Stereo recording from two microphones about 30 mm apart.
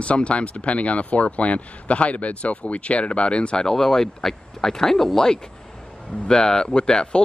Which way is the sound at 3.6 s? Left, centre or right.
Centre.